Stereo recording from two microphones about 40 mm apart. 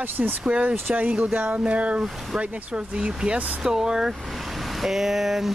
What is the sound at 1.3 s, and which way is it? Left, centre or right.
Music, right.